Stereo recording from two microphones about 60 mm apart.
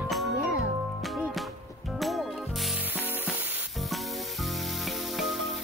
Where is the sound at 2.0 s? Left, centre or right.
Centre.